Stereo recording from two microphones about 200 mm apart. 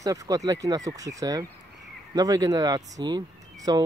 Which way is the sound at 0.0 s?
15° right (ahead or behind).